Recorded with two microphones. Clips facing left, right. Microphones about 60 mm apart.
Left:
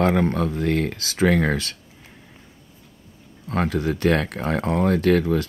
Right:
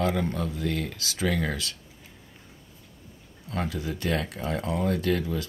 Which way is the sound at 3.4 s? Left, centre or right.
Left.